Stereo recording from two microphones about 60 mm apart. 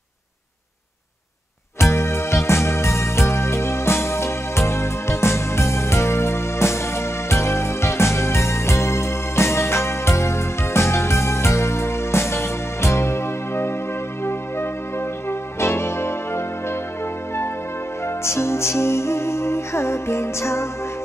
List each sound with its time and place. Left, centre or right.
1.8 s music: left
18.0 s music: left